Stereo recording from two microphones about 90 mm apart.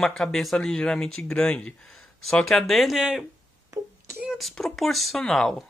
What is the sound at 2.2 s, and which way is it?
Speech, 5° left (ahead or behind).